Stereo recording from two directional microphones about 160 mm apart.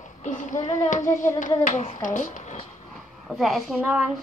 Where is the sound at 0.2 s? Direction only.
50° left (ahead or behind).